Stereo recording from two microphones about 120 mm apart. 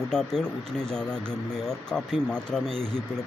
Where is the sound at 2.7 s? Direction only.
50° right (ahead or behind).